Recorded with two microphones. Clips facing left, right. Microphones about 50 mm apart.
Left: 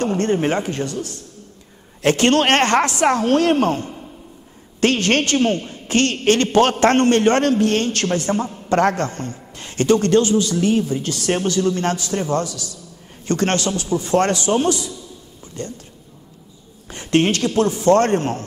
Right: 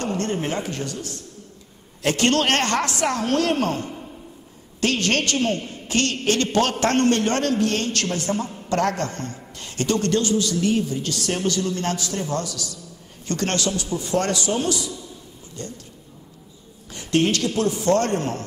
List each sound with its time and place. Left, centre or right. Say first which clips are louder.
0.0 s a man's voice: left 6 dB; left
16.9 s a man's voice: left 3 dB; left